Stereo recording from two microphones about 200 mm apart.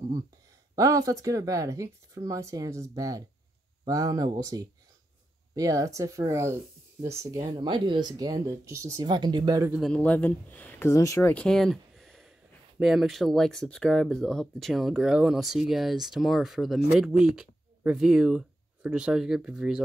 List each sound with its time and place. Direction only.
0.7 s speech: 15° right (ahead or behind)
9.7 s speech: centre (ahead or behind)